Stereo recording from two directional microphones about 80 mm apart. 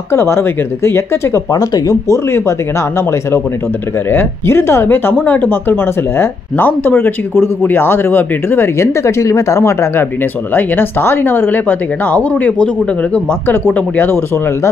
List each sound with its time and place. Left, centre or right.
0.1 s speech: left
1.5 s speech: left
3.0 s speech: left; by 12.6 s centre
13.7 s speech: left